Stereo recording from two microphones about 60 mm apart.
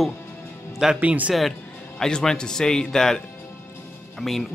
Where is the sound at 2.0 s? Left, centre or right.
Centre.